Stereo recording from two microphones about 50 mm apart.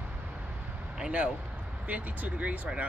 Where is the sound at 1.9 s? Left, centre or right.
Right.